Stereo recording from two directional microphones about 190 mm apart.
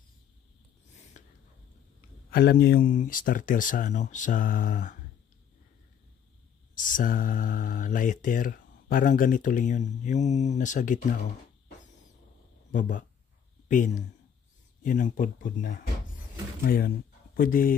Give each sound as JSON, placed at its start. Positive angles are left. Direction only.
{"t": 1.1, "sound": "whispering", "side_deg": 40}
{"t": 2.3, "sound": "speech", "side_deg": 55}
{"t": 6.8, "sound": "speech", "side_deg": 45}
{"t": 12.7, "sound": "speech", "side_deg": 40}